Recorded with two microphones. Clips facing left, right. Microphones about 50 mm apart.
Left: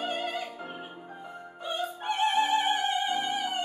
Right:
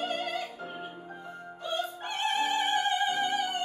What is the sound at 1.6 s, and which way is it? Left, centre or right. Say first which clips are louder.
Opera: left 1 dB; centre.